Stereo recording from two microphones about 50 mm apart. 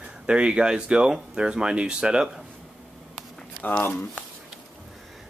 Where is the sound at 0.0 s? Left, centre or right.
Centre.